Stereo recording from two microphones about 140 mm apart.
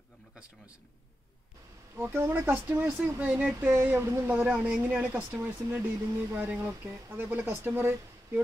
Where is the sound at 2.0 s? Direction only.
15° right (ahead or behind).